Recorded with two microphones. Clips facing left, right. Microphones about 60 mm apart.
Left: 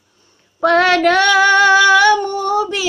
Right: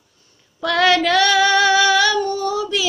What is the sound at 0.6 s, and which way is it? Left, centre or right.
Female singing, left.